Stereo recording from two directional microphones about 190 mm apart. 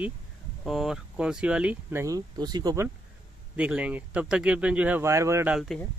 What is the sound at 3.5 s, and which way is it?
A man's voice, 5° right (ahead or behind).